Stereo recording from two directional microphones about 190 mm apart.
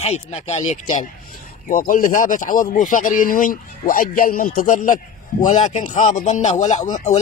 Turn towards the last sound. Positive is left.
turn(degrees=40)  # may be behind; listen again after turning